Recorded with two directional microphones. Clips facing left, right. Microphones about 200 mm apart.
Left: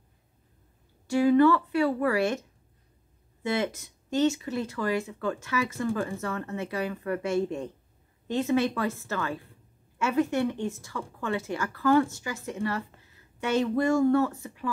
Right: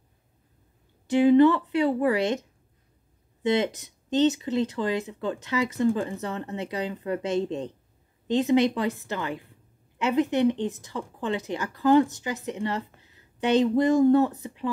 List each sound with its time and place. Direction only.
1.0 s a woman's voice: 20° right (ahead or behind)
3.4 s a woman's voice: 20° right (ahead or behind)